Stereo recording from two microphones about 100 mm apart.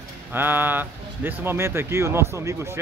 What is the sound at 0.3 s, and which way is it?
Speech, 20° right (ahead or behind).